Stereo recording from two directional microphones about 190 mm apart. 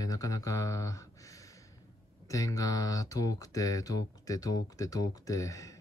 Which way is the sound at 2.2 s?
15° left (ahead or behind).